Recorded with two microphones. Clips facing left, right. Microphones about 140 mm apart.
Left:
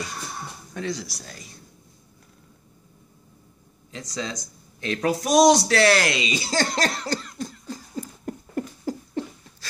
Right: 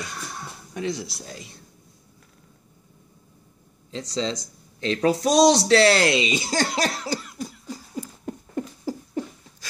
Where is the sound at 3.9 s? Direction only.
30° right (ahead or behind).